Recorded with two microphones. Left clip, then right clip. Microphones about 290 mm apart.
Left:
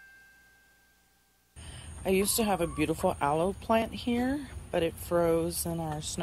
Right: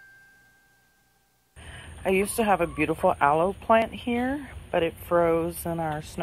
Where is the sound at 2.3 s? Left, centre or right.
Centre.